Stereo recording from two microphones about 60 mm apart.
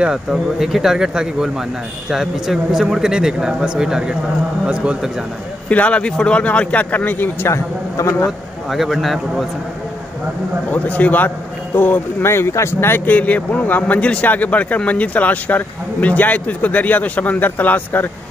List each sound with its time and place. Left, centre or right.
0.0 s a man's voice: centre
5.7 s a man's voice: left
7.4 s a man's voice: left
8.6 s a man's voice: centre
10.7 s a man's voice: left
12.3 s a man's voice: left